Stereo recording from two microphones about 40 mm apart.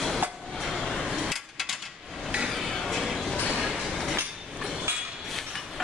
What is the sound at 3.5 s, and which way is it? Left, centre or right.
Train, centre.